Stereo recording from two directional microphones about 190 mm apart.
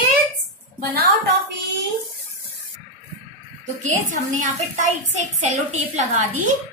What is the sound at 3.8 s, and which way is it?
A woman's voice, 40° right (ahead or behind).